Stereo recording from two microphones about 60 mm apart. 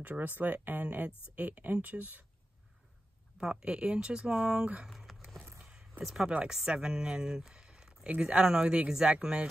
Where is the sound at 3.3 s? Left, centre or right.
Centre.